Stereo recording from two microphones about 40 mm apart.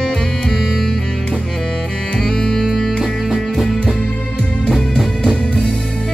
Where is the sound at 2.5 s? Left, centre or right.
Centre.